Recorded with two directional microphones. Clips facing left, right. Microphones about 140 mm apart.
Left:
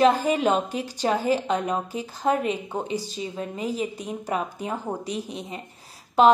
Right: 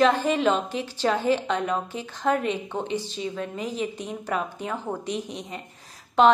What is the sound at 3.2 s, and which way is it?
Speech, 25° left (ahead or behind).